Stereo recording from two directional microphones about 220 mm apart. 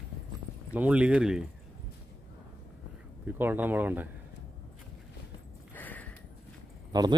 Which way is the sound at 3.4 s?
10° right (ahead or behind).